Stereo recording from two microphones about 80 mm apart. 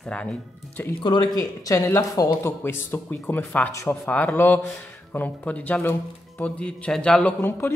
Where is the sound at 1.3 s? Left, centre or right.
Left.